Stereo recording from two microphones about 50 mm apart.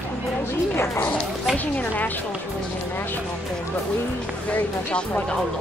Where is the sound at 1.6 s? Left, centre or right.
Left.